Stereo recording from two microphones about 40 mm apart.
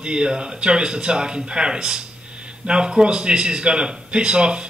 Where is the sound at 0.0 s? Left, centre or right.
Right.